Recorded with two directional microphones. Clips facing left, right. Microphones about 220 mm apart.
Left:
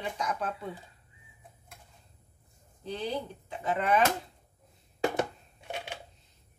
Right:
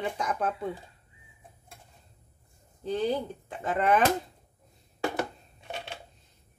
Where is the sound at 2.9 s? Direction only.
50° right (ahead or behind).